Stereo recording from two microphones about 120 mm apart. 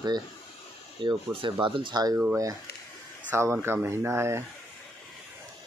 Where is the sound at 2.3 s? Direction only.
30° right (ahead or behind).